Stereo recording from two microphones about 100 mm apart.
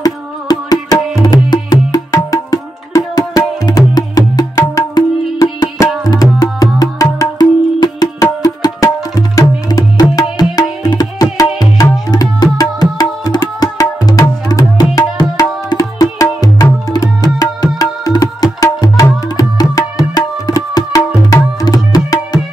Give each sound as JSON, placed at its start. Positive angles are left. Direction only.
{"t": 0.0, "sound": "music", "side_deg": 40}
{"t": 10.5, "sound": "tabla", "side_deg": 40}
{"t": 14.5, "sound": "music", "side_deg": 40}